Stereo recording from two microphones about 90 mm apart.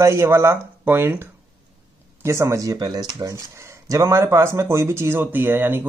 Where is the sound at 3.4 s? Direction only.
30° right (ahead or behind).